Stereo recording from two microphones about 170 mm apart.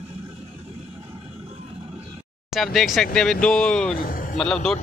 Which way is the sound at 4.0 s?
55° left (ahead or behind).